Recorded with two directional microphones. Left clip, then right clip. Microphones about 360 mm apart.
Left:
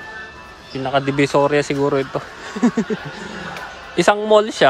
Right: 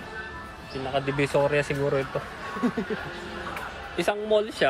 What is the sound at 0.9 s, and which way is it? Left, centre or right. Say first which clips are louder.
Speech: left 8 dB; centre.